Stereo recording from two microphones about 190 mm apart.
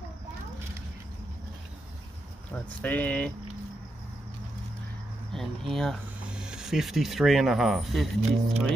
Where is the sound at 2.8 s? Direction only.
10° left (ahead or behind).